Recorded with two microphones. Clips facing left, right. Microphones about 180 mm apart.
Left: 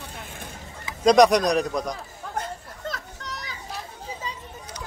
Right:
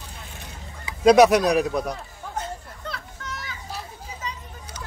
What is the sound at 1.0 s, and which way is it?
Speech, 5° right (ahead or behind).